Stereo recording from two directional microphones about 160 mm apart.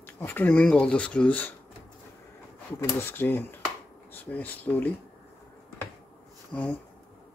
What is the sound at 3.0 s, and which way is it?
Speech, 15° left (ahead or behind).